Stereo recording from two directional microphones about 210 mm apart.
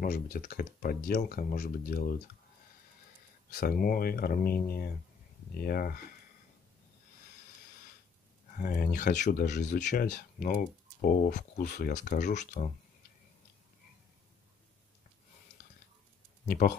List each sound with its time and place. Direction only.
0.0 s speech: 45° left (ahead or behind)
3.4 s speech: 45° left (ahead or behind)
8.5 s speech: 40° left (ahead or behind)
16.4 s speech: 35° left (ahead or behind)